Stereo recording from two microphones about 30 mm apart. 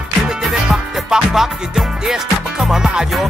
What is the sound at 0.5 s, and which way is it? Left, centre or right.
Music, centre.